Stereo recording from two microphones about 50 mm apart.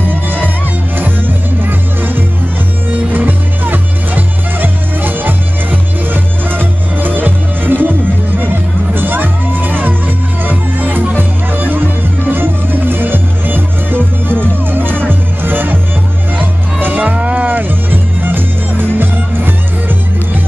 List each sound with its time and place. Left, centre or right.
0.0 s music: right
16.8 s music: right